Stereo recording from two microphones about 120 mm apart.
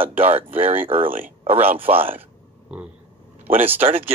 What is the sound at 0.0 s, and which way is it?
Speech, 55° right (ahead or behind).